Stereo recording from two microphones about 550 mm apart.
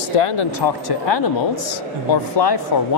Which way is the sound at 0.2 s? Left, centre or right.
Left.